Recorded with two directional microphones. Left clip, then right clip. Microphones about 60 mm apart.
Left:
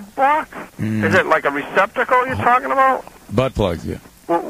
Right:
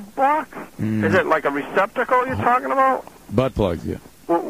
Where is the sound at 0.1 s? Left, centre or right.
Left.